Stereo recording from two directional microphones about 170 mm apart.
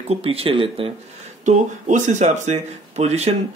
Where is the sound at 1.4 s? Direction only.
45° right (ahead or behind).